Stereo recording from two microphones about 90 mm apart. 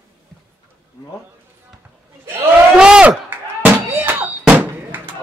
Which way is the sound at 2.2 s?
25° right (ahead or behind).